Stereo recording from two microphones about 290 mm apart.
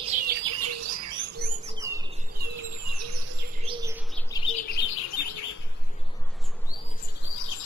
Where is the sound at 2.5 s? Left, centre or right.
Right.